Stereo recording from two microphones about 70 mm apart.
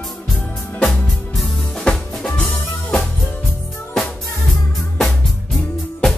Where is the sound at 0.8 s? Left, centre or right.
Centre.